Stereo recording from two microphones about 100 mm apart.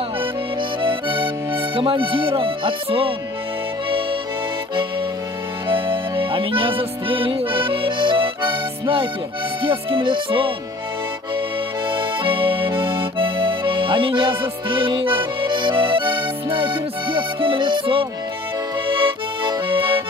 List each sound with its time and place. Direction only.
0.8 s music: 55° right (ahead or behind)
5.7 s music: 55° right (ahead or behind)
11.9 s accordion: 55° right (ahead or behind)